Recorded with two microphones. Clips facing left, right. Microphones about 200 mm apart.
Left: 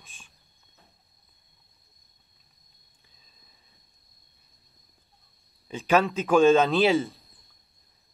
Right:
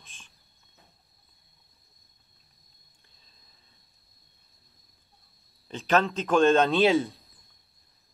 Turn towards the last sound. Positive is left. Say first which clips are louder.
# even
turn(degrees=0)  # may be behind; listen again after turning